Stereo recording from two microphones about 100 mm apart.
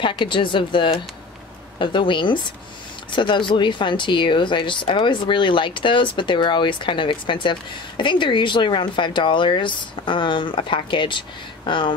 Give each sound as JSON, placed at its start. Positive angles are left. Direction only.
{"t": 0.0, "sound": "speech", "side_deg": 55}